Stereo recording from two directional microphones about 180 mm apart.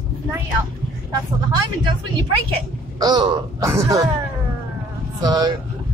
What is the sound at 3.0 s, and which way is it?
Speech, 25° right (ahead or behind).